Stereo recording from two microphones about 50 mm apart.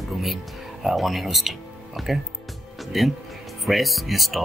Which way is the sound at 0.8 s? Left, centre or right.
Centre.